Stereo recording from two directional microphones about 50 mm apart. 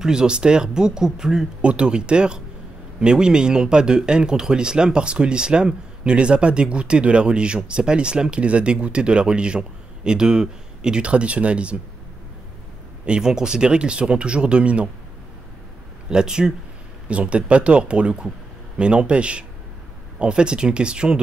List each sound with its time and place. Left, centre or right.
0.0 s speech: centre
1.6 s speech: right
13.0 s speech: centre
16.1 s speech: centre